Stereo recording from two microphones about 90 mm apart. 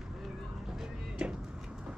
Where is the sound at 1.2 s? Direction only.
10° right (ahead or behind).